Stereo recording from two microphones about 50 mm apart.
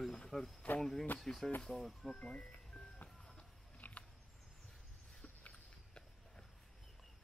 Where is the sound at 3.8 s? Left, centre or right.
Left.